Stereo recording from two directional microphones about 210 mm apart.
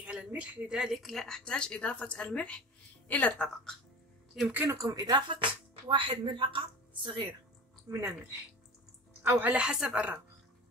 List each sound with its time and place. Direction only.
0.0 s a woman's voice: 5° right (ahead or behind)
4.4 s speech: 10° right (ahead or behind)
9.2 s a woman's voice: 10° right (ahead or behind)